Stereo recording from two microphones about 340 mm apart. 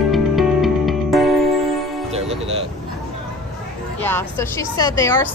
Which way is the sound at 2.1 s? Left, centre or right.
Centre.